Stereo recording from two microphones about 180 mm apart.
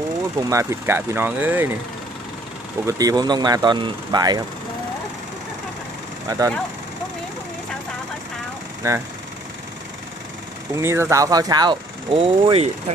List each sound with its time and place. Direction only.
0.4 s speech: 15° right (ahead or behind)
2.9 s speech: 20° right (ahead or behind)
6.2 s speech: 20° right (ahead or behind)
8.8 s speech: 15° right (ahead or behind)
10.7 s speech: 15° right (ahead or behind); by 12.9 s 30° right (ahead or behind)